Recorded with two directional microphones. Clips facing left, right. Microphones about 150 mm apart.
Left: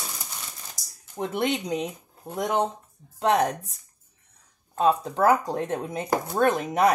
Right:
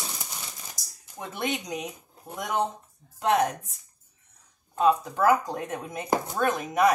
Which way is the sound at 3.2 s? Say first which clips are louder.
Left 1 dB; 30° left (ahead or behind).